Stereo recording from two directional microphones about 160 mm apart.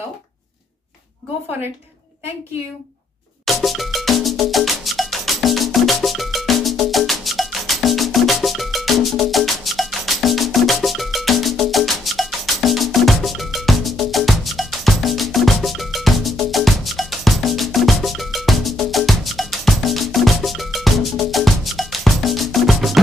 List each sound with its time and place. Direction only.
3.4 s music: centre (ahead or behind)